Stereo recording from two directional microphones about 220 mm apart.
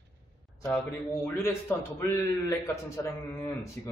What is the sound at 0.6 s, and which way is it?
A man's voice, 10° left (ahead or behind).